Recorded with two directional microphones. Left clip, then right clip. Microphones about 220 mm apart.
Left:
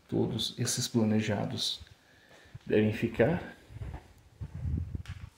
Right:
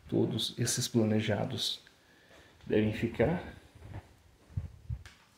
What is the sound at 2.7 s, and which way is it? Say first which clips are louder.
Speech: left 2 dB; 5° left (ahead or behind).